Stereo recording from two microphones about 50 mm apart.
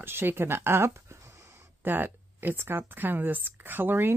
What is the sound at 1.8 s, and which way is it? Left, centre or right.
Speech, right.